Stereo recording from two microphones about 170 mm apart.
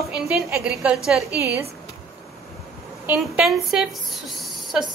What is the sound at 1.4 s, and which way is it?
Speech, 15° right (ahead or behind).